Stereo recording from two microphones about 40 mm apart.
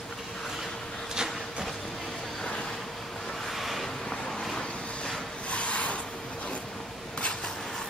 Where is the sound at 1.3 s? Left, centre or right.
Centre.